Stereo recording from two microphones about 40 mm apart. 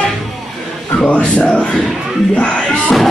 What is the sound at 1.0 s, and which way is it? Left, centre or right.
Speech, left.